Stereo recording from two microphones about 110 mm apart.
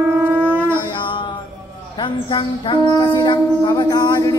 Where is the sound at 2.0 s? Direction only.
50° left (ahead or behind).